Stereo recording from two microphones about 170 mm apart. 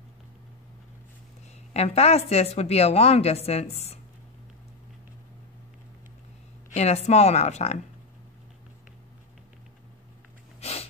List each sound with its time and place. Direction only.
1.7 s a woman's voice: 40° left (ahead or behind)
6.7 s a woman's voice: 40° left (ahead or behind)
10.6 s snort: 40° left (ahead or behind)